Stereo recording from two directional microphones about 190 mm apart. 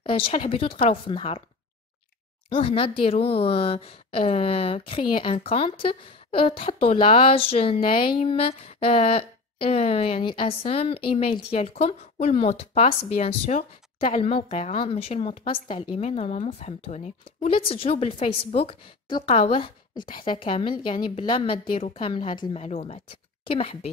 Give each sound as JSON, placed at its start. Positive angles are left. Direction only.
{"t": 0.0, "sound": "a woman's voice", "side_deg": 30}
{"t": 2.5, "sound": "a woman's voice", "side_deg": 30}